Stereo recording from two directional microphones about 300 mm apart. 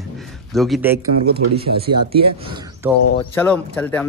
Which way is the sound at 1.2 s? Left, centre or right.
Right.